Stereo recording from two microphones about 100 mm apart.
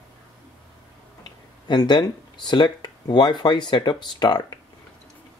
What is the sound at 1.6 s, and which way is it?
Speech, 50° left (ahead or behind).